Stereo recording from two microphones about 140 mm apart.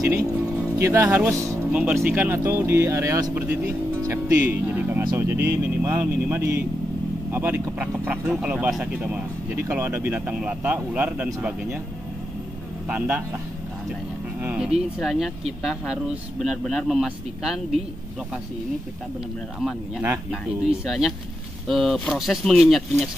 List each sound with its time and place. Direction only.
0.0 s speech: 15° right (ahead or behind)
3.3 s speech: 15° right (ahead or behind)
4.0 s speech: 25° right (ahead or behind)
4.4 s speech: 15° right (ahead or behind)
12.8 s speech: 10° right (ahead or behind)
14.4 s speech: 10° right (ahead or behind)
20.8 s speech: centre (ahead or behind)